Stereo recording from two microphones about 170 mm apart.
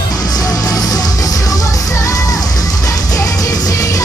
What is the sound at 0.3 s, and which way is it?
Music, 20° left (ahead or behind).